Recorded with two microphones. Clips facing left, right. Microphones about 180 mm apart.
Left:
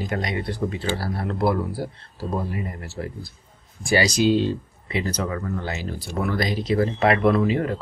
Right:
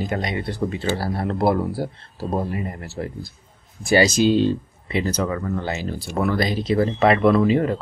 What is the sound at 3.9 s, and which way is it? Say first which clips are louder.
Speech: right 3 dB; 25° right (ahead or behind).